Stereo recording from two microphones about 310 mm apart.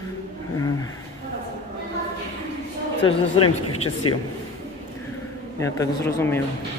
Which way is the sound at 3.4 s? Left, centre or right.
Left.